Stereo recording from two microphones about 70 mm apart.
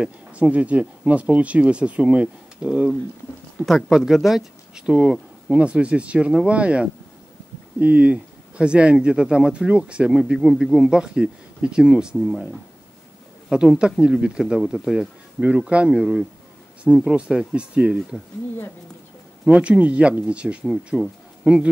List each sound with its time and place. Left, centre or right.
0.0 s speech: centre
3.6 s speech: centre
12.2 s speech: centre
13.5 s speech: centre
15.4 s speech: centre
19.4 s speech: centre
20.6 s speech: centre
21.4 s speech: right